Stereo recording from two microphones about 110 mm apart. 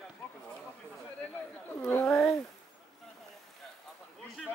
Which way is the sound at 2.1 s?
5° left (ahead or behind).